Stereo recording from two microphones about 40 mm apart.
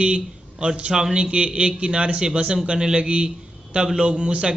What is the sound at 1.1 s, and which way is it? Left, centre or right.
A man's voice, right.